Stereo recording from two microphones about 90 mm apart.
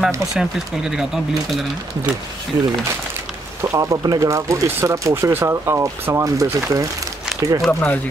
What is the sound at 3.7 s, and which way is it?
Speech, 40° right (ahead or behind).